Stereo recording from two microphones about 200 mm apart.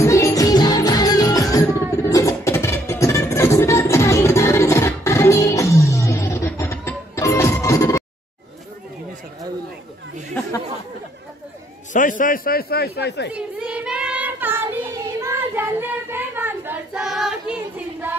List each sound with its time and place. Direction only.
0.0 s music: 15° left (ahead or behind)
11.9 s a man's voice: 40° left (ahead or behind); by 13.3 s 55° left (ahead or behind)
13.3 s child singing: 5° right (ahead or behind)